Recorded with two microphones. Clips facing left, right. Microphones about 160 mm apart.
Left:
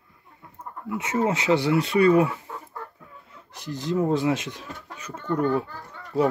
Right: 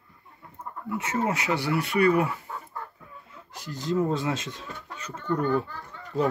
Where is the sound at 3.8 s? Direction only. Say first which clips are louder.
Left 3 dB; 15° left (ahead or behind).